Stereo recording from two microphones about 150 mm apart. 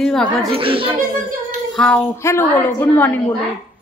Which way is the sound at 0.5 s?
35° right (ahead or behind).